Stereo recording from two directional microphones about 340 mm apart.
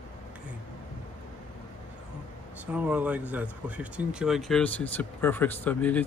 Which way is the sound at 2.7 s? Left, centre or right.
Centre.